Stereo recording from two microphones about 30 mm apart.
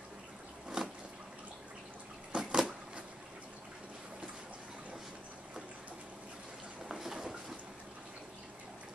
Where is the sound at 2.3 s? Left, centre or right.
Right.